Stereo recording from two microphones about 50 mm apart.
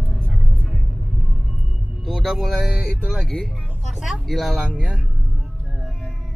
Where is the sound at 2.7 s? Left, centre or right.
Centre.